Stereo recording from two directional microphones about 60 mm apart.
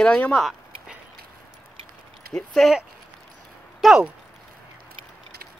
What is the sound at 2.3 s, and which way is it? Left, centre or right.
Speech, centre.